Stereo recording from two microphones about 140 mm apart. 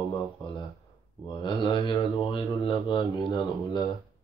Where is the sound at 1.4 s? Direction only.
35° left (ahead or behind).